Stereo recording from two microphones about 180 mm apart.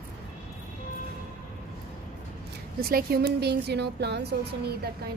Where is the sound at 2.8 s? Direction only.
55° right (ahead or behind).